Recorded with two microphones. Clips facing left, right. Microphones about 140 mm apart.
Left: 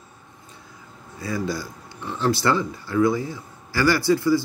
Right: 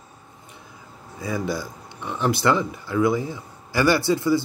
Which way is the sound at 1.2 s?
20° right (ahead or behind).